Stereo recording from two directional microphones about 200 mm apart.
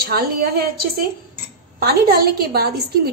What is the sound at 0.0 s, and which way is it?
A woman's voice, 50° right (ahead or behind).